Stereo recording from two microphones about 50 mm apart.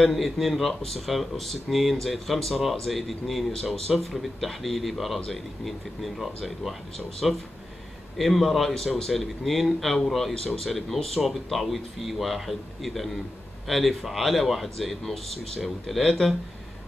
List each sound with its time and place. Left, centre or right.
0.0 s speech: centre